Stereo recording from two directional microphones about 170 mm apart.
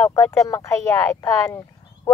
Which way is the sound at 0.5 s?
15° left (ahead or behind).